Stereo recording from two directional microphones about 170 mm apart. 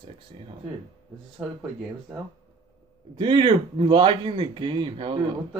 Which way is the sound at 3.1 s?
30° right (ahead or behind).